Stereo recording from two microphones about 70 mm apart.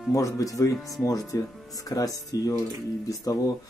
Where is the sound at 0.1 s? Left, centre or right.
Left.